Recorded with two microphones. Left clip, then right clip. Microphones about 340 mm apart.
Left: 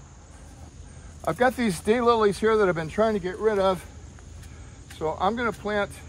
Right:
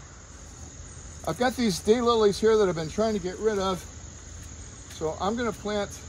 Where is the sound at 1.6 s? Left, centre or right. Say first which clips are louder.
Right 1 dB; left.